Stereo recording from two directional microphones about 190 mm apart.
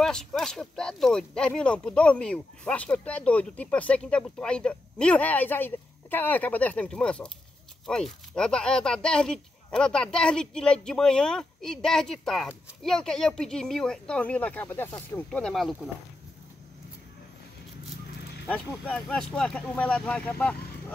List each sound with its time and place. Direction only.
0.0 s speech: 5° left (ahead or behind)
18.9 s speech: 5° left (ahead or behind)